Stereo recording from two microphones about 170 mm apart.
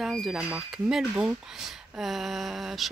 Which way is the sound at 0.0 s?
Centre (ahead or behind).